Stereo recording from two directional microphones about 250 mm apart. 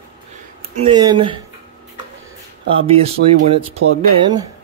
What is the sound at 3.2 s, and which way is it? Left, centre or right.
Speech, right.